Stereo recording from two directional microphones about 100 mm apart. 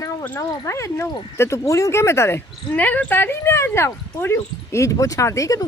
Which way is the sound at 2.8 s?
15° left (ahead or behind).